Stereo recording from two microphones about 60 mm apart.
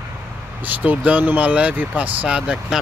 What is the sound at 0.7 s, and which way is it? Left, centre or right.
Speech, right.